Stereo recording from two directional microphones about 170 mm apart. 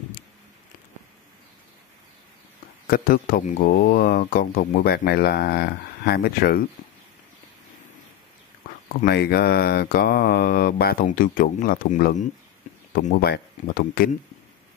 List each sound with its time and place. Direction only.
2.9 s speech: 60° left (ahead or behind)
9.0 s speech: 65° left (ahead or behind); by 12.3 s 45° left (ahead or behind)
12.9 s speech: 60° left (ahead or behind)